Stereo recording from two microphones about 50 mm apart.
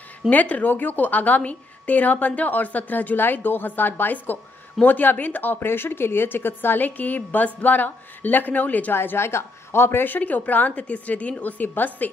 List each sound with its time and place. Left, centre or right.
0.3 s a woman's voice: left
8.9 s a woman's voice: left